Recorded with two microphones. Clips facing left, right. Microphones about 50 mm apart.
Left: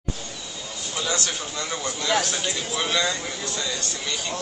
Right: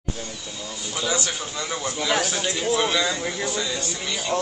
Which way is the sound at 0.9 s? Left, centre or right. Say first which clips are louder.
Right 1 dB; centre.